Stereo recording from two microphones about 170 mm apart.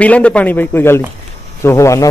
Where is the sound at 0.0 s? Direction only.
5° left (ahead or behind).